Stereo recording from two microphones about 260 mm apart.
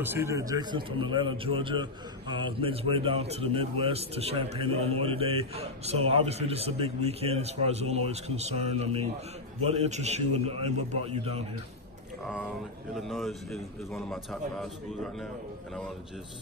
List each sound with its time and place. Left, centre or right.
0.0 s a man's voice: centre
12.9 s a man's voice: centre